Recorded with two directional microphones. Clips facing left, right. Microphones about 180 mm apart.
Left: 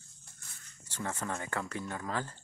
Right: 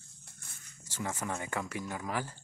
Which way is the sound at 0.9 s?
10° right (ahead or behind).